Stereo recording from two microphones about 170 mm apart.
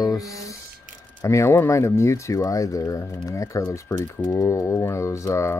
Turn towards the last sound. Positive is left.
turn(degrees=15)  # may be behind; listen again after turning